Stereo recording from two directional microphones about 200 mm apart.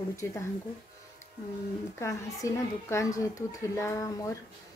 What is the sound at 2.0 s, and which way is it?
Speech, 15° left (ahead or behind).